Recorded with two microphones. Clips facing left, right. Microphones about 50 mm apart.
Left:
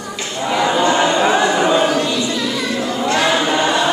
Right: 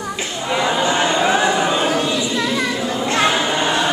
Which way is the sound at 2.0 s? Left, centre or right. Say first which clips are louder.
Left 1 dB; right.